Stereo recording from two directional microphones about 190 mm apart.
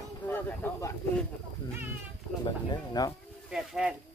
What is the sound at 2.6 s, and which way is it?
Speech, 20° left (ahead or behind).